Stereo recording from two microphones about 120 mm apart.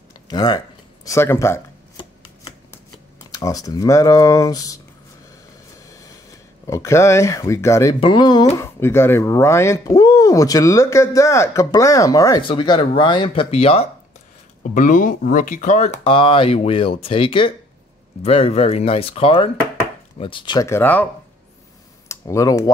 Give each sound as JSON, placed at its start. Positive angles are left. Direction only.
{"t": 0.3, "sound": "speech", "side_deg": 35}
{"t": 3.3, "sound": "speech", "side_deg": 30}
{"t": 5.9, "sound": "a sound", "side_deg": 25}
{"t": 8.0, "sound": "speech", "side_deg": 40}
{"t": 8.5, "sound": "speech", "side_deg": 20}
{"t": 12.4, "sound": "speech", "side_deg": 40}
{"t": 14.6, "sound": "speech", "side_deg": 90}
{"t": 16.0, "sound": "speech", "side_deg": 50}
{"t": 20.6, "sound": "speech", "side_deg": 20}
{"t": 22.0, "sound": "computer keyboard", "side_deg": 25}